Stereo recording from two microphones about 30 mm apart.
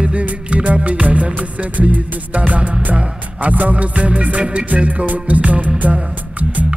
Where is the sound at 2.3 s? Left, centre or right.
Right.